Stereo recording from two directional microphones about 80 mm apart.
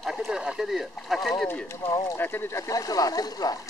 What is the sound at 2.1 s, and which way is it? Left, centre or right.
Speech, left.